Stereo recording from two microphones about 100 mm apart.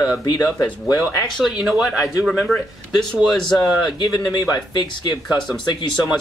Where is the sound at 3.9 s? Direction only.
50° left (ahead or behind).